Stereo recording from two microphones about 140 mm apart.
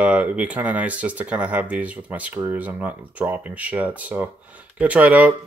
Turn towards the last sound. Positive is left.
turn(degrees=-10)  # may be behind; listen again after turning